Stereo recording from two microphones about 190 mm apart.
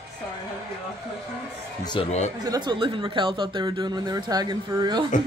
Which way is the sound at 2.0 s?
25° left (ahead or behind).